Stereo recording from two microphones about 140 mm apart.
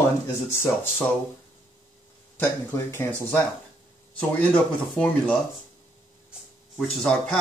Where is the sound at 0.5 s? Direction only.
15° left (ahead or behind).